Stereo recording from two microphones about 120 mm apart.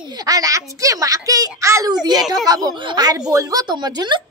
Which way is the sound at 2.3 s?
30° right (ahead or behind).